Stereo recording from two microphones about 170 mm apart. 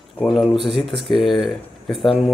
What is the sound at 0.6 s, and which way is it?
Speech, centre (ahead or behind).